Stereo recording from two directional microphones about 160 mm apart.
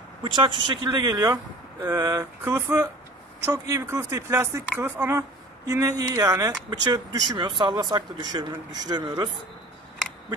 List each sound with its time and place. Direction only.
0.2 s speech: 30° right (ahead or behind)